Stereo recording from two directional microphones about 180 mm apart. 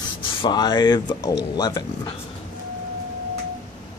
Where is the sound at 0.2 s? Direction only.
30° left (ahead or behind).